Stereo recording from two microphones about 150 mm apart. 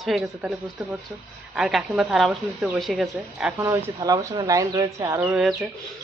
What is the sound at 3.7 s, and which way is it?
Speech, 20° right (ahead or behind).